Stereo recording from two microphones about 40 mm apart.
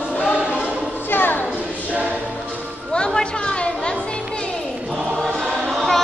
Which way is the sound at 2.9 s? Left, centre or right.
Left.